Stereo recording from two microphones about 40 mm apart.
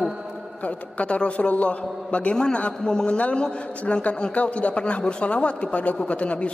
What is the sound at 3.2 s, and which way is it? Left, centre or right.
Speech, left.